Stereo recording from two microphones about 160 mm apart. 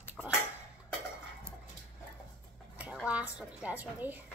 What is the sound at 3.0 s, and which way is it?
A woman's voice, 10° right (ahead or behind).